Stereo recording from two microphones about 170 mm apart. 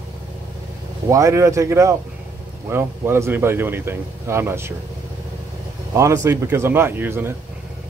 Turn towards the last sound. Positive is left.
turn(degrees=-15)  # may be behind; listen again after turning